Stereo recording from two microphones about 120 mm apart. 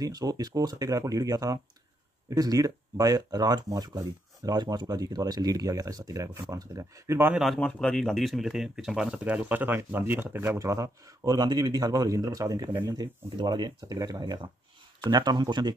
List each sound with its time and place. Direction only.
0.0 s speech: 30° right (ahead or behind)
7.3 s speech: centre (ahead or behind); by 15.7 s 35° right (ahead or behind)